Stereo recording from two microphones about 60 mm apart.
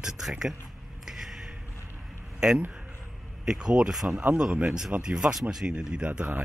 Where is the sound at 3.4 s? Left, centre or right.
Centre.